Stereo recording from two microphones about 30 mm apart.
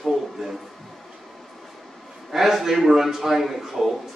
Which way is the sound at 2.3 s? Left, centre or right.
Centre.